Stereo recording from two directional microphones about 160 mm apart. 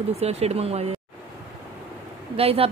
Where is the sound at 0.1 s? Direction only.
40° right (ahead or behind).